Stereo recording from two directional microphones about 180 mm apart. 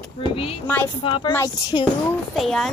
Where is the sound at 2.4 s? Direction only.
Centre (ahead or behind).